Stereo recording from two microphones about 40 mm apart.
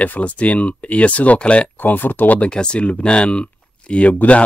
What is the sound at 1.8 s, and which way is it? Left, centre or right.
Speech, left.